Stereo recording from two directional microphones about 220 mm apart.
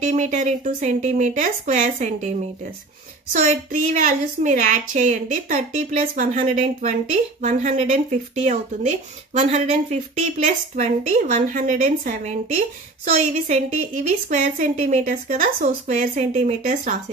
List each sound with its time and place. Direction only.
0.0 s speech: 35° right (ahead or behind)
3.3 s speech: 35° right (ahead or behind)